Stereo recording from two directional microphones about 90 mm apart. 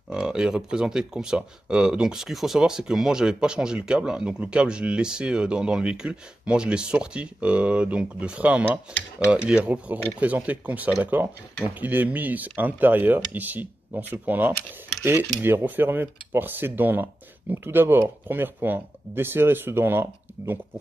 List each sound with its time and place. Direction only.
0.1 s speech: 5° right (ahead or behind); by 20.5 s 25° right (ahead or behind)